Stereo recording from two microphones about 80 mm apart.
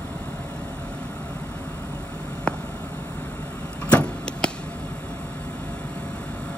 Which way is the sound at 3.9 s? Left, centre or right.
Centre.